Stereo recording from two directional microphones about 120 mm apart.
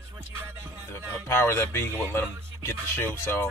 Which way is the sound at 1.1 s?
20° left (ahead or behind).